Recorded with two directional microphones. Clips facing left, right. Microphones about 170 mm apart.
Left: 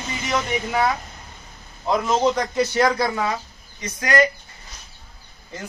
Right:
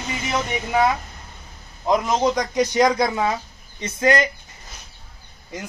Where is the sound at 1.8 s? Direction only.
15° right (ahead or behind).